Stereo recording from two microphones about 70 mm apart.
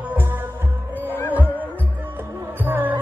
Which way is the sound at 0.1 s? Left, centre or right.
Right.